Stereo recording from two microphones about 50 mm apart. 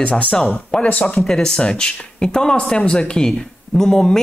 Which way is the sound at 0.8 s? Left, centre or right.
Left.